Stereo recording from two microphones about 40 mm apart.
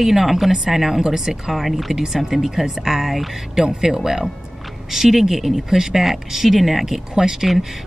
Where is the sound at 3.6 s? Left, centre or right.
Centre.